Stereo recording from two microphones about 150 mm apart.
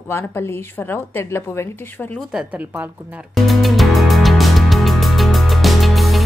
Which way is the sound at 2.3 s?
10° right (ahead or behind).